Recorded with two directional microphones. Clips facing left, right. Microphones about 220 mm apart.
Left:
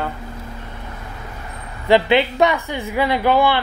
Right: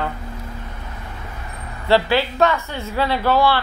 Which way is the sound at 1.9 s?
20° left (ahead or behind).